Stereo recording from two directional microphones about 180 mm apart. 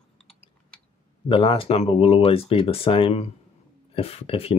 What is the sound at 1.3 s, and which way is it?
Speech, 30° left (ahead or behind).